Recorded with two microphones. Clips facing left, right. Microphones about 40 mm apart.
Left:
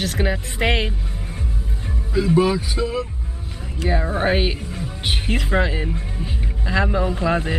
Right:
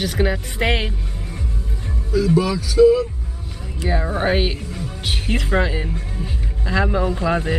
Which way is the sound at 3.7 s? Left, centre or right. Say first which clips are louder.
Even; centre.